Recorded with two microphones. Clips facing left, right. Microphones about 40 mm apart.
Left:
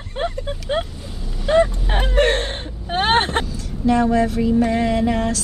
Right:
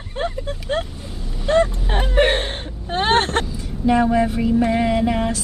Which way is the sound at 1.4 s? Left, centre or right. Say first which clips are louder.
Left 1 dB; centre.